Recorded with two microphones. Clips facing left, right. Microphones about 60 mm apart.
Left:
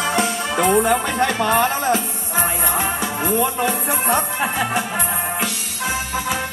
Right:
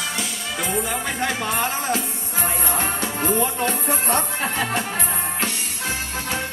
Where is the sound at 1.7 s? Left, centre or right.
Left.